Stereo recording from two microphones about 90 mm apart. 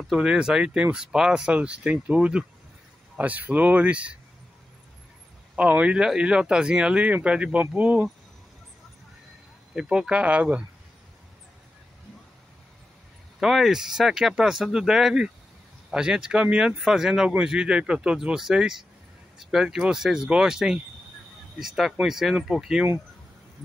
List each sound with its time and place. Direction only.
0.1 s speech: 5° right (ahead or behind)
5.6 s speech: 15° right (ahead or behind)
9.8 s speech: 10° right (ahead or behind)
13.4 s speech: 5° right (ahead or behind)